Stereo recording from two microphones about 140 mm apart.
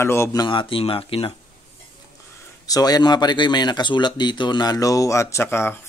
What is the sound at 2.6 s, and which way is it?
Speech, 25° left (ahead or behind).